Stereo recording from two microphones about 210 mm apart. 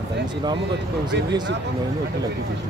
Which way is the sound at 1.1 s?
55° right (ahead or behind).